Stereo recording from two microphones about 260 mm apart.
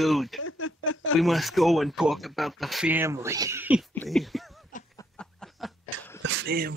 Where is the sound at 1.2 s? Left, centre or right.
Centre.